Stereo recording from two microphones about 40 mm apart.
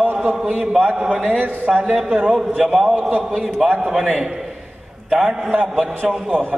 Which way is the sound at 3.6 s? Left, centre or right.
Right.